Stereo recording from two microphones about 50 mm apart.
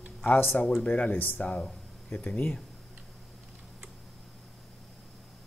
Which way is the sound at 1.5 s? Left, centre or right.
Left.